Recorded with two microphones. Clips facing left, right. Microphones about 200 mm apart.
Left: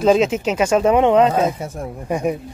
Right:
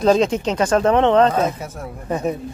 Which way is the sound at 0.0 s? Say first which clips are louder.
Left 1 dB; 5° left (ahead or behind).